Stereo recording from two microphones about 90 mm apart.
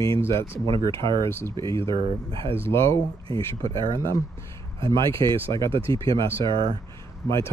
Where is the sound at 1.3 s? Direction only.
25° left (ahead or behind).